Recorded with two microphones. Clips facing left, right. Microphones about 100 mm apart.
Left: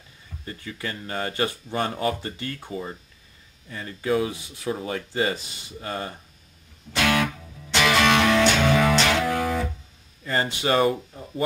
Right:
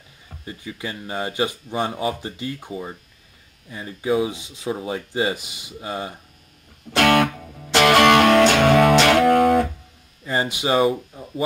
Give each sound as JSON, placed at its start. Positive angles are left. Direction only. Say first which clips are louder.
{"t": 0.5, "sound": "speech", "louder": "right 2 dB", "side_deg": -15}
{"t": 6.9, "sound": "music", "louder": "right 6 dB", "side_deg": -55}
{"t": 10.2, "sound": "speech", "louder": "right 2 dB", "side_deg": -15}